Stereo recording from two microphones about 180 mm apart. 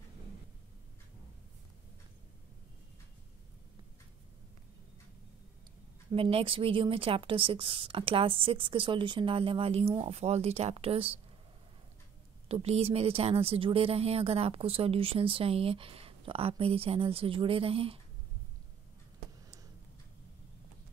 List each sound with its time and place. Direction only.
6.1 s speech: 30° right (ahead or behind)
12.4 s speech: 35° right (ahead or behind)